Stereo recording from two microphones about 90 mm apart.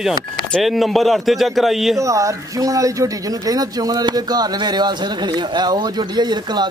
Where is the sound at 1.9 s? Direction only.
35° right (ahead or behind).